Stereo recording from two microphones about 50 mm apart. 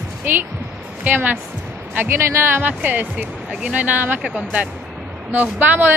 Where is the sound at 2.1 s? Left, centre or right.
Right.